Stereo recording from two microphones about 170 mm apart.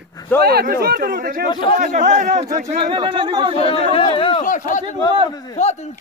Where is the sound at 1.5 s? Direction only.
30° left (ahead or behind).